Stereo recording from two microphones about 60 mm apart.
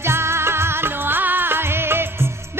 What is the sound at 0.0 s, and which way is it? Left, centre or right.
Music, right.